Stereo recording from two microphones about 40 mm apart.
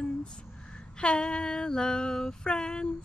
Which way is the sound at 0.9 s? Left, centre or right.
Left.